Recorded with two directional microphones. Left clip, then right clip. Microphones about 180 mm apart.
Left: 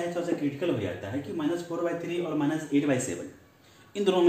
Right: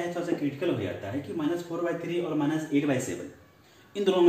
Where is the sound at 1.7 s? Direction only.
30° left (ahead or behind).